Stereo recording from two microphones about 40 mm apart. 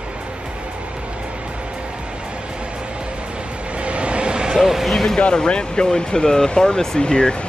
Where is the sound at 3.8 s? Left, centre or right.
Right; by 4.8 s centre.